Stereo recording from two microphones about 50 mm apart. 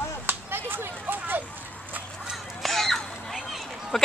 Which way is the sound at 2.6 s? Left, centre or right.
Centre.